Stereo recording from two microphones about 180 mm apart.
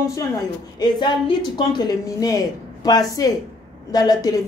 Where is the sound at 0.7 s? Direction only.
25° left (ahead or behind).